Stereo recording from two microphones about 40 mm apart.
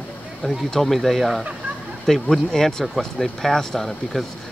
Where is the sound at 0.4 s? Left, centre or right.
Centre.